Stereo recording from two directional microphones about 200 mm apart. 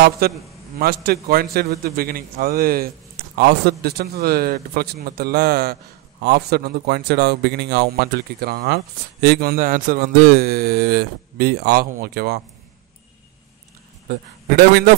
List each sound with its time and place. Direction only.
0.2 s a man's voice: 50° right (ahead or behind)
14.0 s a man's voice: 50° right (ahead or behind)